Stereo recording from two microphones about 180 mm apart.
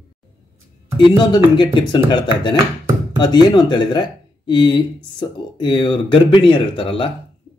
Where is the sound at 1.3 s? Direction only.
25° left (ahead or behind).